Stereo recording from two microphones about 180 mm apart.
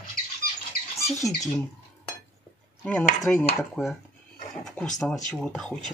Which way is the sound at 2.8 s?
5° left (ahead or behind).